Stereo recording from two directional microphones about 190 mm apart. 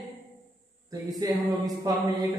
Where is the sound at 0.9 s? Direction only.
20° right (ahead or behind).